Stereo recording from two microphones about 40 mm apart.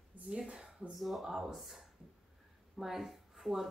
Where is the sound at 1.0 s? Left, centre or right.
Centre.